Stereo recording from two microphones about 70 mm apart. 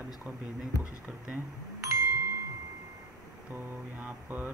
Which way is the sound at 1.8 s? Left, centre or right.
Right.